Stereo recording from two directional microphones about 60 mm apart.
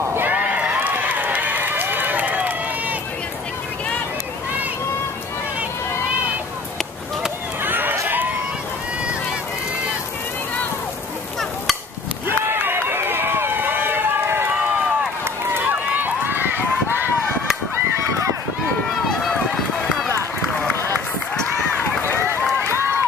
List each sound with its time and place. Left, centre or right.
0.0 s a sound: right
0.3 s run: right
7.6 s run: right
12.4 s run: right
15.5 s run: right
18.9 s run: centre
21.7 s run: left